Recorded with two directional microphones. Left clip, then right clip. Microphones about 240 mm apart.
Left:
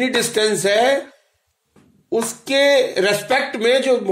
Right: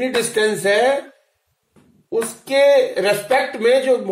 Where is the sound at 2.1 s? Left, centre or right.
Left.